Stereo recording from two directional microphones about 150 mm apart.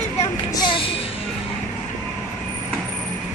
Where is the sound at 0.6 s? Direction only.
35° left (ahead or behind).